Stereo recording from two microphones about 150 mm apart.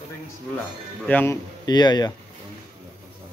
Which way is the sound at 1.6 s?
30° left (ahead or behind).